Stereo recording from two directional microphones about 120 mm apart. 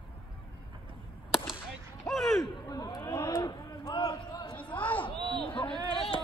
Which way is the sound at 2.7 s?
35° left (ahead or behind).